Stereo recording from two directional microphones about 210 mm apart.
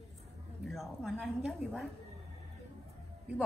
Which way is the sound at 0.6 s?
Centre (ahead or behind).